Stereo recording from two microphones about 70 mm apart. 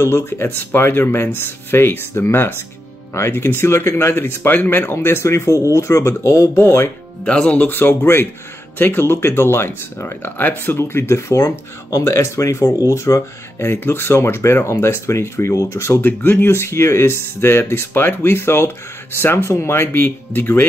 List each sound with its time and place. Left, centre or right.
0.0 s speech: left
6.5 s speech: left
7.2 s speech: centre; by 16.1 s left
16.1 s speech: left